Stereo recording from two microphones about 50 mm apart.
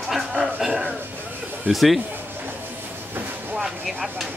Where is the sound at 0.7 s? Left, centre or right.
Right.